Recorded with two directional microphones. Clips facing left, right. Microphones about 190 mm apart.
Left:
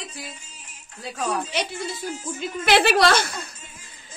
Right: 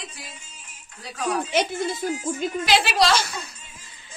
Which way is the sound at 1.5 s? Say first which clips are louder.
Right 5 dB; 50° right (ahead or behind).